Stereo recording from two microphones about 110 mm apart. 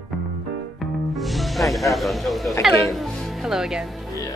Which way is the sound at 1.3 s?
Centre (ahead or behind).